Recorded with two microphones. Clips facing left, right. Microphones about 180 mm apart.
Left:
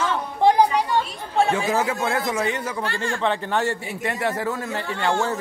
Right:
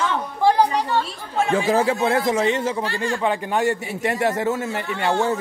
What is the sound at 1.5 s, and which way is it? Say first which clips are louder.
A man's voice: right 3 dB; 30° right (ahead or behind).